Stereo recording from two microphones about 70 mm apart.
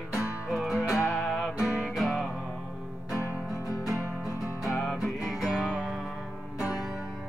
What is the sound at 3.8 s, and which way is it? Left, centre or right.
Music, centre.